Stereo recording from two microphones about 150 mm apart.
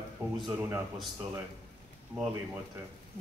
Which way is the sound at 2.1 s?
30° right (ahead or behind).